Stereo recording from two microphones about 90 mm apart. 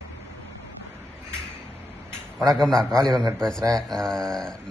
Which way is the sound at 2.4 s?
Centre (ahead or behind).